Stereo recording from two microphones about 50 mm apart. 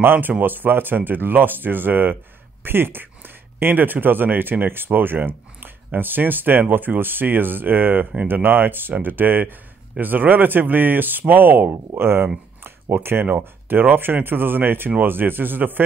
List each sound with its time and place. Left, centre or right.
0.0 s speech: right
12.6 s a sound: right
13.3 s speech: right